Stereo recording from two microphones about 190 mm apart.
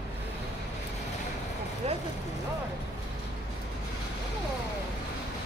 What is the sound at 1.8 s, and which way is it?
Vehicle, 35° right (ahead or behind).